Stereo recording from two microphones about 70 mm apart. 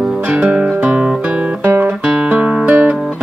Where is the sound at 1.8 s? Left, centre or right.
Centre.